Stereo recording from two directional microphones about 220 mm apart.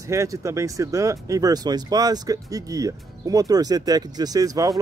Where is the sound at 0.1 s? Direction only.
15° right (ahead or behind).